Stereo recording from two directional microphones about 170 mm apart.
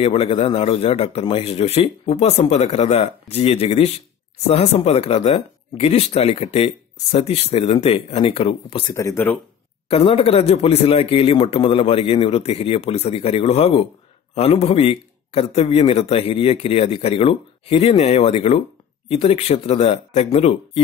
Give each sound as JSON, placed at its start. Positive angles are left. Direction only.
{"t": 0.0, "sound": "speech", "side_deg": 35}
{"t": 8.9, "sound": "speech", "side_deg": 15}
{"t": 9.8, "sound": "speech", "side_deg": 35}